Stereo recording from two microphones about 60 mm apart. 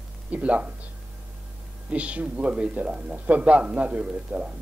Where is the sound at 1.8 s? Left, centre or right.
Right.